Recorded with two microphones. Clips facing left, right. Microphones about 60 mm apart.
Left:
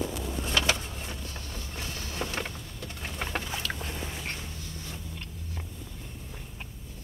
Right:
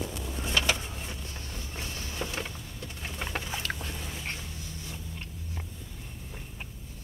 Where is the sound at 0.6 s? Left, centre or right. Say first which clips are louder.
Left 1 dB; centre.